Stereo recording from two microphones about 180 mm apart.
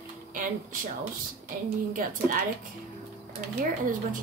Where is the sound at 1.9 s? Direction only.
50° right (ahead or behind).